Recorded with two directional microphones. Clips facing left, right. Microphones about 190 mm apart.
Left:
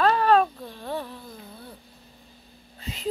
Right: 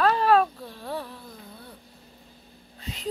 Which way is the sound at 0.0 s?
5° right (ahead or behind).